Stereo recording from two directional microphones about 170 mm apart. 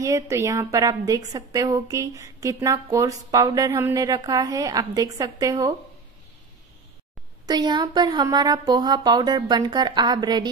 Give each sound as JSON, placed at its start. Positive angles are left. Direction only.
{"t": 0.0, "sound": "a woman's voice", "side_deg": -20}
{"t": 7.4, "sound": "a woman's voice", "side_deg": -25}